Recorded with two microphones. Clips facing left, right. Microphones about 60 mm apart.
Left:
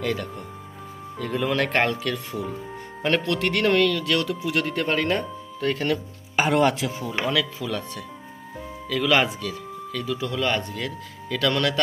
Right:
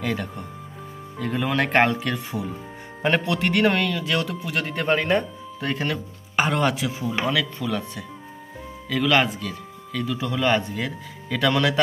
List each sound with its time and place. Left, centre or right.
0.0 s speech: centre
5.9 s speech: centre